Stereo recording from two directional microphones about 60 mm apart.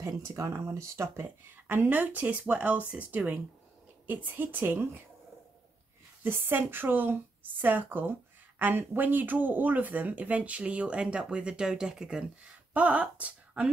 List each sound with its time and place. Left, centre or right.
0.0 s speech: right
6.2 s speech: right; by 12.3 s centre
12.7 s speech: right